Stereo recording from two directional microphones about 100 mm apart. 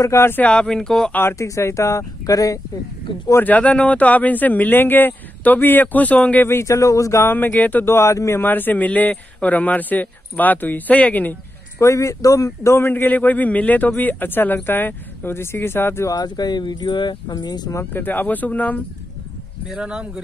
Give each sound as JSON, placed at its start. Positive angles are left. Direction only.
{"t": 0.0, "sound": "a man's voice", "side_deg": 25}
{"t": 0.5, "sound": "speech", "side_deg": 10}
{"t": 1.1, "sound": "speech", "side_deg": 25}
{"t": 3.4, "sound": "speech", "side_deg": 15}
{"t": 11.8, "sound": "a man's voice", "side_deg": 30}
{"t": 16.1, "sound": "speech", "side_deg": 45}
{"t": 17.9, "sound": "speech", "side_deg": 20}
{"t": 19.7, "sound": "speech", "side_deg": -10}